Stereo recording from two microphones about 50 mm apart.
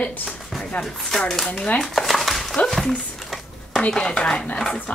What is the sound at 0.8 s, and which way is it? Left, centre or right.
Chopping, centre.